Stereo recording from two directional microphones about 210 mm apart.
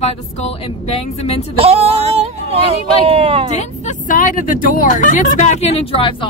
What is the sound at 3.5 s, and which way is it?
Speech, 35° left (ahead or behind).